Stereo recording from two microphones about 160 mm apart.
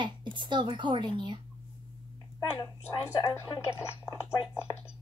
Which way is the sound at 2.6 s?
15° left (ahead or behind).